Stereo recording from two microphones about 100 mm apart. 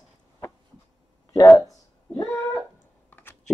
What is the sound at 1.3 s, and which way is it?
Speech, 35° left (ahead or behind).